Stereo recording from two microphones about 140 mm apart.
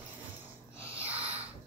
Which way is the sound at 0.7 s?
20° left (ahead or behind).